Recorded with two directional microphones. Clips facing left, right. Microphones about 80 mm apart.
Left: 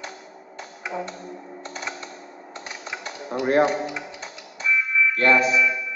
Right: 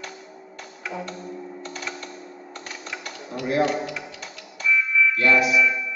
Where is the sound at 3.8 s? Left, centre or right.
Left.